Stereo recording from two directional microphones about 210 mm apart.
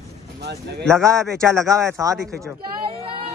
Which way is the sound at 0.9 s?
15° right (ahead or behind).